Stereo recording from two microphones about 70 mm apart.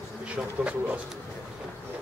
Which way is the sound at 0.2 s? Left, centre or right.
Centre.